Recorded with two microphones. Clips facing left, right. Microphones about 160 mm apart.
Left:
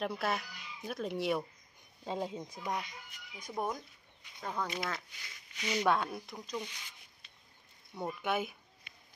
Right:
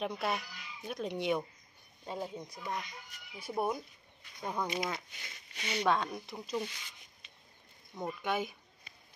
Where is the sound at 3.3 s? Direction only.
10° right (ahead or behind).